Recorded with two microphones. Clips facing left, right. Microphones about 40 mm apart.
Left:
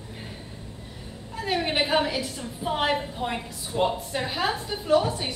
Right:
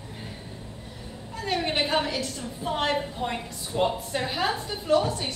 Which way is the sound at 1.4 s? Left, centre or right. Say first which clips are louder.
Left 1 dB; centre.